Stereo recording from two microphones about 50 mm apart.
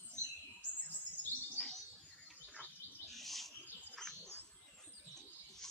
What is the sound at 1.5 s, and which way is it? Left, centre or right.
Bird, centre.